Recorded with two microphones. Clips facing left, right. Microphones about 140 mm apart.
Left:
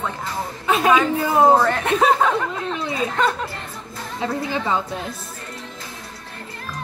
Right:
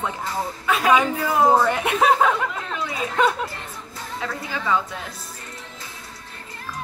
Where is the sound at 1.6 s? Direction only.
10° right (ahead or behind).